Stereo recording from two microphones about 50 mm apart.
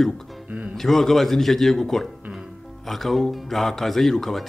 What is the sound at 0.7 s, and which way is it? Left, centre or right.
Speech, centre.